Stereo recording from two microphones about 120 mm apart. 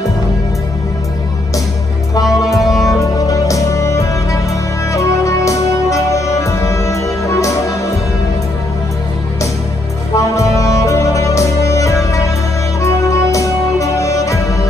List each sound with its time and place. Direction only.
2.2 s music: centre (ahead or behind)
3.0 s music: 30° left (ahead or behind)
10.1 s music: 25° left (ahead or behind)